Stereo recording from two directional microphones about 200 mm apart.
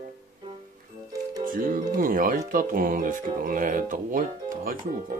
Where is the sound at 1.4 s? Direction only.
45° right (ahead or behind).